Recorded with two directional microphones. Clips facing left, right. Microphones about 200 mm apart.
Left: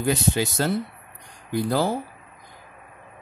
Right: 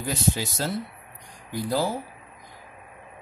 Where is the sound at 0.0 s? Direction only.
65° left (ahead or behind).